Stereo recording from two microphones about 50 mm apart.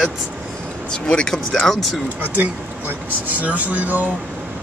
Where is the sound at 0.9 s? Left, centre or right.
Centre.